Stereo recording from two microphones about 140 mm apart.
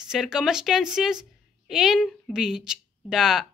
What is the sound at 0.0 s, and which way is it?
A woman's voice, 5° right (ahead or behind).